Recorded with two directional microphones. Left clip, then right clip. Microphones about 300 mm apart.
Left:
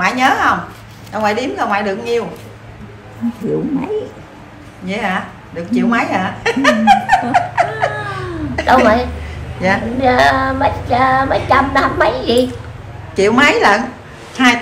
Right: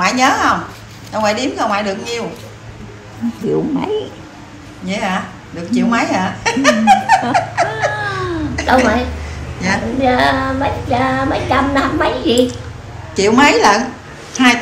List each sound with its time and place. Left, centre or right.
0.0 s a woman's voice: centre
4.8 s a woman's voice: centre
9.6 s a woman's voice: centre
9.9 s child singing: centre
13.1 s a woman's voice: centre